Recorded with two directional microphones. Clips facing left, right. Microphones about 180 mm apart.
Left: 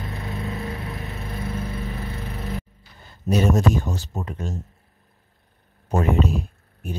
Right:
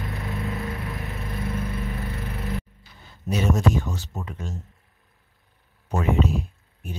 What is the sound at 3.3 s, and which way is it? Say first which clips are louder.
Speech: left 3 dB; 40° left (ahead or behind).